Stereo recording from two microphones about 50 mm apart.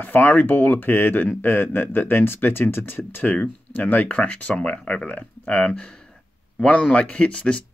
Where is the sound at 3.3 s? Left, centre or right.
Left.